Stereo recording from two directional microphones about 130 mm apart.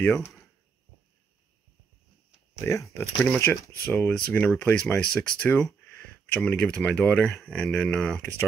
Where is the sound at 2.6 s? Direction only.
25° left (ahead or behind); by 8.4 s 5° left (ahead or behind).